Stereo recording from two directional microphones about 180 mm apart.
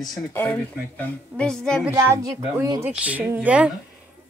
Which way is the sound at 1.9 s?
15° right (ahead or behind).